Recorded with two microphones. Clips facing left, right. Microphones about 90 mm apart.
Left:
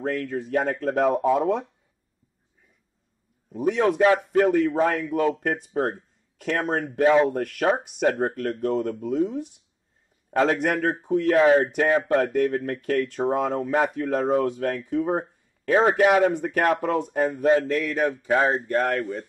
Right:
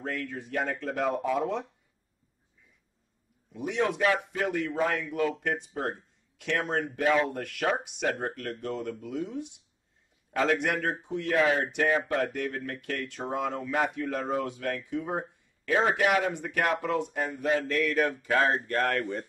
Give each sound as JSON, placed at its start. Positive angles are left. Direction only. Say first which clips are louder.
{"t": 0.0, "sound": "speech", "louder": "left 8 dB", "side_deg": 45}
{"t": 3.5, "sound": "speech", "louder": "left 7 dB", "side_deg": 45}
{"t": 18.3, "sound": "speech", "louder": "left 5 dB", "side_deg": 15}